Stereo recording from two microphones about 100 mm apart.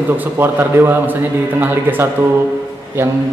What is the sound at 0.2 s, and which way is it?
A man's voice, 20° right (ahead or behind).